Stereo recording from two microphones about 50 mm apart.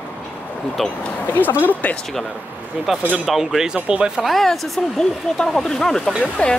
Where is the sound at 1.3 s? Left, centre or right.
Left.